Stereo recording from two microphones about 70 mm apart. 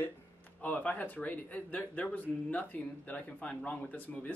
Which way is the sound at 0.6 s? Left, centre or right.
Left.